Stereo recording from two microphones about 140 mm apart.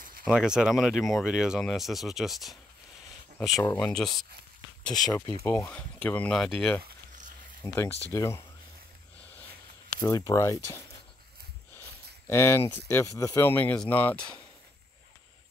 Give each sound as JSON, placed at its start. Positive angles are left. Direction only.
{"t": 0.3, "sound": "speech", "side_deg": -5}
{"t": 3.6, "sound": "speech", "side_deg": 25}
{"t": 3.9, "sound": "speech", "side_deg": 5}
{"t": 4.9, "sound": "speech", "side_deg": 30}
{"t": 5.7, "sound": "speech", "side_deg": 10}
{"t": 6.8, "sound": "a sound", "side_deg": -65}
{"t": 7.6, "sound": "speech", "side_deg": 20}
{"t": 9.9, "sound": "speech", "side_deg": 25}
{"t": 12.3, "sound": "speech", "side_deg": 20}